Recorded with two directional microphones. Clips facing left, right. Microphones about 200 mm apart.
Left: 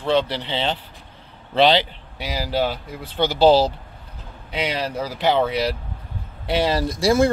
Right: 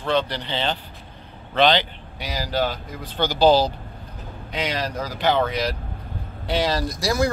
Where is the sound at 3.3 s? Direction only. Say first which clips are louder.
Left 2 dB; 25° left (ahead or behind).